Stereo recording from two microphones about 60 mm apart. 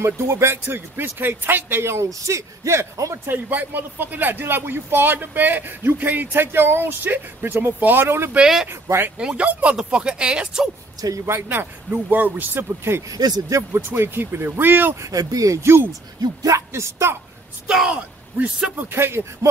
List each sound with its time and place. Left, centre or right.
0.0 s speech: right
0.7 s speech: right
2.0 s speech: right
3.3 s speech: right
9.2 s speech: centre
11.0 s speech: right
11.2 s speech: right
13.1 s speech: right
13.7 s speech: right
15.0 s speech: right
15.6 s speech: right
16.2 s speech: right
17.8 s speech: right
18.8 s speech: right